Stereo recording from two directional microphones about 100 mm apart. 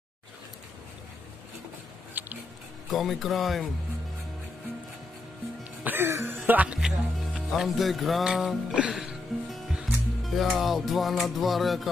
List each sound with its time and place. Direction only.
2.2 s music: 20° right (ahead or behind)
2.9 s speech: centre (ahead or behind)
5.6 s music: 20° right (ahead or behind)
7.2 s music: centre (ahead or behind)